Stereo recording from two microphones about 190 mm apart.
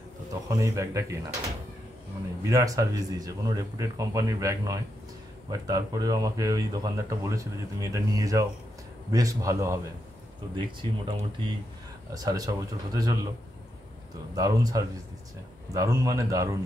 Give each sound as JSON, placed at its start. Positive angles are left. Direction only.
{"t": 0.3, "sound": "speech", "side_deg": -15}
{"t": 2.5, "sound": "speech", "side_deg": -20}
{"t": 14.3, "sound": "speech", "side_deg": -20}